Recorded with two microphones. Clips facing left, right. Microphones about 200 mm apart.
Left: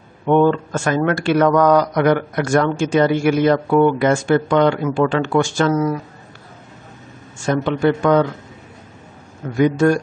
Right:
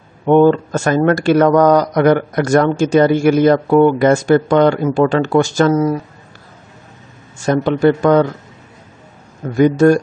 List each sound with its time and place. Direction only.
0.3 s speech: 40° right (ahead or behind)
7.3 s speech: 40° right (ahead or behind)
9.6 s speech: 40° right (ahead or behind)